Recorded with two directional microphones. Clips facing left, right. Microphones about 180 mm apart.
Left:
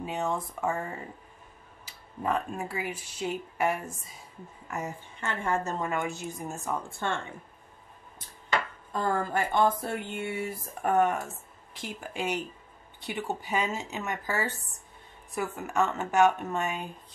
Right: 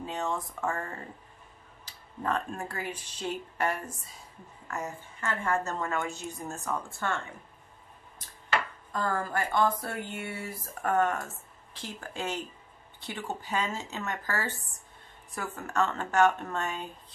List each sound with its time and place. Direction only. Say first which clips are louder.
0.0 s speech: left 2 dB; 15° left (ahead or behind)
2.2 s a woman's voice: left 2 dB; 5° left (ahead or behind)
5.2 s speech: even; 25° left (ahead or behind)
8.9 s speech: left 2 dB; 25° left (ahead or behind)